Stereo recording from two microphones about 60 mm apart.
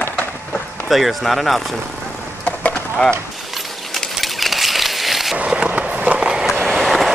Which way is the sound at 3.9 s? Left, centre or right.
Centre.